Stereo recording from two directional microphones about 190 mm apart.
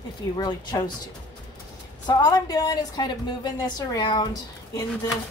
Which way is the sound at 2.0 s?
20° left (ahead or behind).